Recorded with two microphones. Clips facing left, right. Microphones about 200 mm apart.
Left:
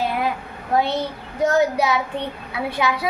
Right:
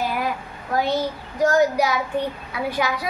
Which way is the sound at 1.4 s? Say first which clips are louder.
Even; 25° left (ahead or behind).